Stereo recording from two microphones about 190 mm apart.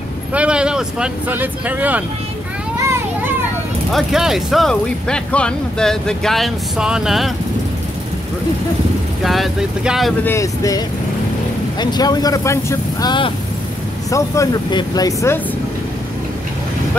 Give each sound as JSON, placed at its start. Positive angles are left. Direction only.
{"t": 0.3, "sound": "speech", "side_deg": -5}
{"t": 3.9, "sound": "speech", "side_deg": 0}
{"t": 9.2, "sound": "speech", "side_deg": 0}
{"t": 10.2, "sound": "speech", "side_deg": 15}
{"t": 11.8, "sound": "speech", "side_deg": 20}